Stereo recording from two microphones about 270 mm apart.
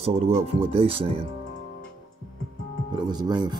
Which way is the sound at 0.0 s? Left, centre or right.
Right.